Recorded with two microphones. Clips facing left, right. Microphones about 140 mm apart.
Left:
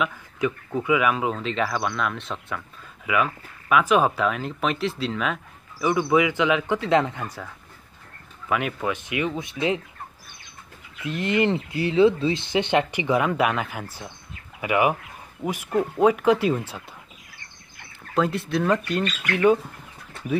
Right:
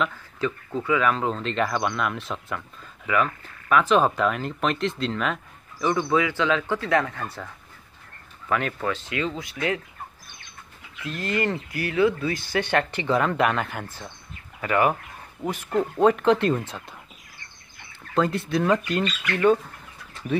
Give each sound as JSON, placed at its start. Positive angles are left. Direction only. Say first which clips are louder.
{"t": 0.0, "sound": "speech", "louder": "left 1 dB", "side_deg": 10}
{"t": 8.5, "sound": "speech", "louder": "even", "side_deg": 10}
{"t": 11.0, "sound": "speech", "louder": "left 4 dB", "side_deg": 20}
{"t": 18.1, "sound": "speech", "louder": "even", "side_deg": 0}
{"t": 19.3, "sound": "speech", "louder": "left 1 dB", "side_deg": 10}